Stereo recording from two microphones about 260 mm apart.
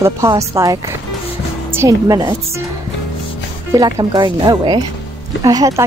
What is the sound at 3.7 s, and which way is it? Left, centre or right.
A woman's voice, centre.